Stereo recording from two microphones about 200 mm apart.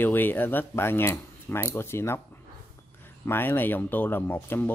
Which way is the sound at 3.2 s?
10° left (ahead or behind).